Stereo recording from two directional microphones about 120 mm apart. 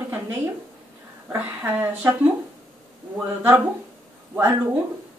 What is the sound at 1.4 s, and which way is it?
Speech, 15° right (ahead or behind).